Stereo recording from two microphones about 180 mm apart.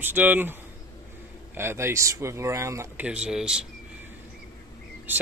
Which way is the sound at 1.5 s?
15° right (ahead or behind).